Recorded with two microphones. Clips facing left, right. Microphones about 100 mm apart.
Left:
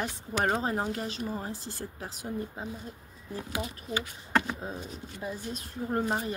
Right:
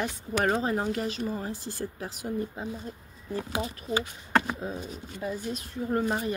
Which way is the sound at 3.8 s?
30° right (ahead or behind).